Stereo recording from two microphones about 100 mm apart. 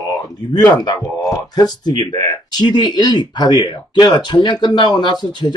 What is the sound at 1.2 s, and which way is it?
Speech, 40° left (ahead or behind).